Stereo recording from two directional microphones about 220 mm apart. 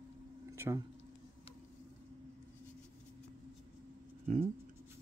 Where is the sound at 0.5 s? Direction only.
15° right (ahead or behind).